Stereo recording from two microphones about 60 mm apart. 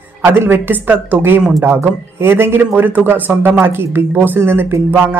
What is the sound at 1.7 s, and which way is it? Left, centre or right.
Speech, right.